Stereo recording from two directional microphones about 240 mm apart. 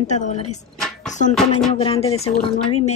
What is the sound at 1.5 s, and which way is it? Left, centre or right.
Speech, left.